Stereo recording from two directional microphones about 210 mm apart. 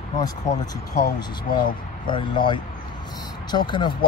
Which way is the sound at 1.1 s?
20° left (ahead or behind).